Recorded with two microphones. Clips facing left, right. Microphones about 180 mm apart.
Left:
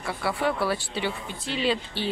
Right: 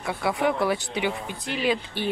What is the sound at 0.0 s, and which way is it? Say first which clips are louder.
Speech: right 2 dB; 15° right (ahead or behind).